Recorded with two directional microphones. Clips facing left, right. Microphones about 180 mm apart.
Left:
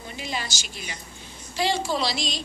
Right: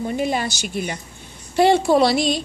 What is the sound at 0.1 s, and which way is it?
A woman's voice, 55° right (ahead or behind).